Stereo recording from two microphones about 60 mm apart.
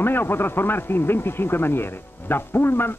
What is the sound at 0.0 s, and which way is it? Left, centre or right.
A man's voice, left.